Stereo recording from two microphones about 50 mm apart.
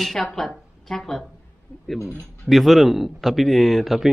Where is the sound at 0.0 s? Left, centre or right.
Centre.